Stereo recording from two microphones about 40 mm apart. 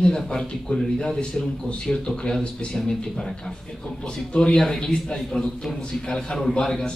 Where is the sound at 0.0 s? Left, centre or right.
Centre.